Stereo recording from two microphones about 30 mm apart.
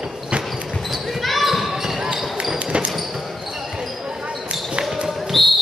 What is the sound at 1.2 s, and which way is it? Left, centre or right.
Basketball bounce, centre.